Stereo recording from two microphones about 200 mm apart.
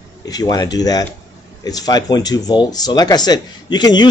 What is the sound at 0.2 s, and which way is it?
Speech, 20° left (ahead or behind).